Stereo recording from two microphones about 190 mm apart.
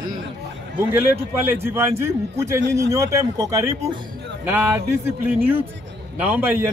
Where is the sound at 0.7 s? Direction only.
10° right (ahead or behind).